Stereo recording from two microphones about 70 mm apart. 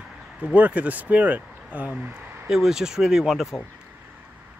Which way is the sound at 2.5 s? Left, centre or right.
Centre.